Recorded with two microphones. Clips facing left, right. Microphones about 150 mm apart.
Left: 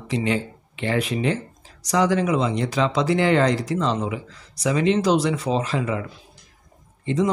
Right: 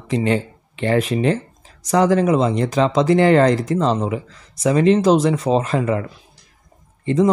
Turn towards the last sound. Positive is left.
turn(degrees=-50)  # may be behind; listen again after turning